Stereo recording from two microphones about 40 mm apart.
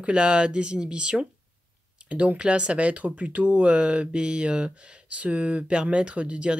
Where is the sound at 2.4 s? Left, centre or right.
Right.